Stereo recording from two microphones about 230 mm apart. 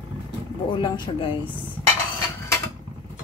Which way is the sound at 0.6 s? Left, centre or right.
Centre.